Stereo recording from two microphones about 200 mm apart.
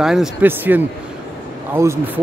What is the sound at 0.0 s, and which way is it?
Speech, centre (ahead or behind).